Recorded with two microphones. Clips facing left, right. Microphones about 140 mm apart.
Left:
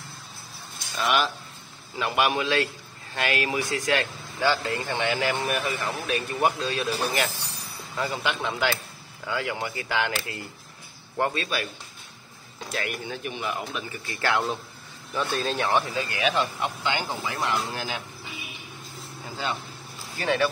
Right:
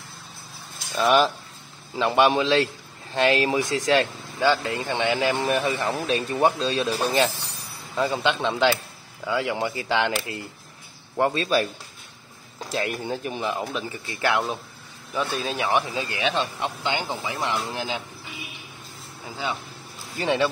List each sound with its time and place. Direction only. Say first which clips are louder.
0.9 s speech: right 6 dB; 35° right (ahead or behind)
11.4 s speech: right 8 dB; 35° right (ahead or behind)
14.2 s speech: right 2 dB; 15° right (ahead or behind)
20.2 s speech: right 2 dB; 20° right (ahead or behind)